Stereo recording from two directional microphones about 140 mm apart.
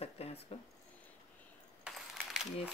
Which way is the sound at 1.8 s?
5° right (ahead or behind).